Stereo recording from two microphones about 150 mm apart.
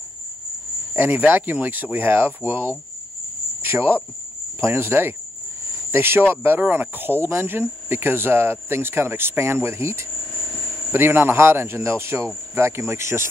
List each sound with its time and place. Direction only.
0.9 s speech: 10° right (ahead or behind)